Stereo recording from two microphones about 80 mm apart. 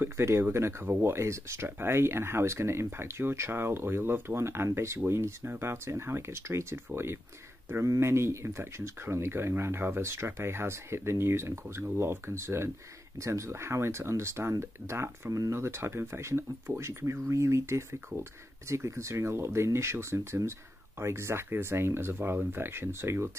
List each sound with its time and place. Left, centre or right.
0.0 s speech: right